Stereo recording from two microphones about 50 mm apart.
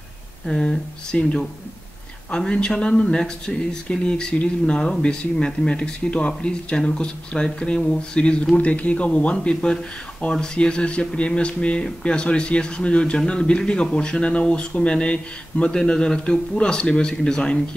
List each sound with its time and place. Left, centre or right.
0.5 s speech: centre